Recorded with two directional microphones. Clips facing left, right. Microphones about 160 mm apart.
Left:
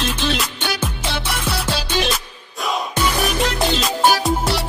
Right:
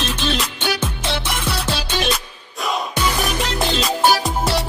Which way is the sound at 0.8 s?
10° left (ahead or behind).